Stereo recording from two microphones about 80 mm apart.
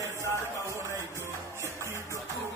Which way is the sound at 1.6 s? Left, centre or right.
Left.